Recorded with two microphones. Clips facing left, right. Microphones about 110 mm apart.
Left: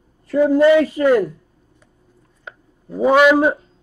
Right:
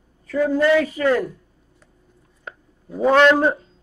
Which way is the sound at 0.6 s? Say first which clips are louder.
Left 5 dB; 20° left (ahead or behind).